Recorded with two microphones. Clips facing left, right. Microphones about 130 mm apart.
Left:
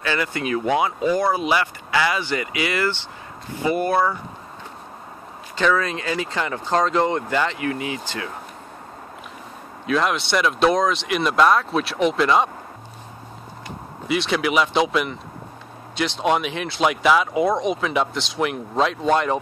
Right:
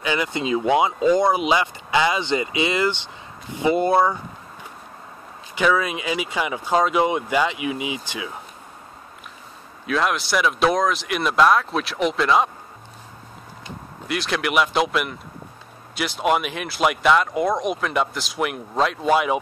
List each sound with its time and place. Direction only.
0.0 s speech: 15° right (ahead or behind)
5.6 s speech: 10° right (ahead or behind)
9.8 s speech: centre (ahead or behind)
14.0 s speech: centre (ahead or behind)